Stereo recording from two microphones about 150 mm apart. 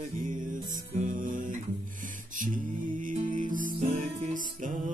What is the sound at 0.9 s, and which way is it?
Music, 60° right (ahead or behind).